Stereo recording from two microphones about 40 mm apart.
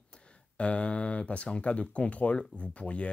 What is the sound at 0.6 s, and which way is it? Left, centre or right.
Speech, left.